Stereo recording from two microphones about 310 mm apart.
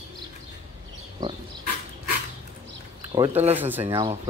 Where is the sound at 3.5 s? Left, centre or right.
Centre.